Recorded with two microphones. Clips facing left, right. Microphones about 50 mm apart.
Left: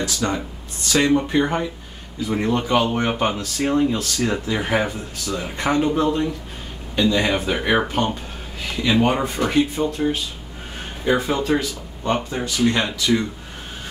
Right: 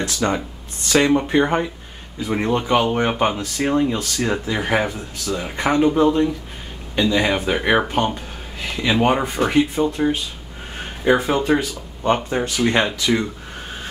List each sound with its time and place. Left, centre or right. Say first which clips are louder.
0.0 s speech: right 2 dB; right
11.1 s speech: right 3 dB; right
12.0 s speech: right 3 dB; right